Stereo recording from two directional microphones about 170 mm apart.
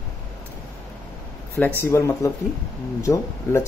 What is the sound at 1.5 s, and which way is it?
Speech, 15° left (ahead or behind).